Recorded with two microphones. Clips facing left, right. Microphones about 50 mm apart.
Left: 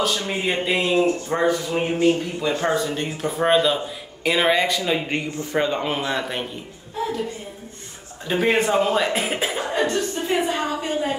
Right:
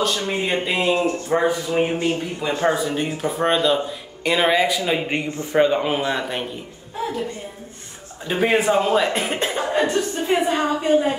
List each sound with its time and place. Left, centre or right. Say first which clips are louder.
0.3 s speech: even; centre
2.0 s speech: left 3 dB; right
2.6 s speech: right 2 dB; centre
8.3 s speech: right 1 dB; centre
9.6 s a woman's voice: right 3 dB; centre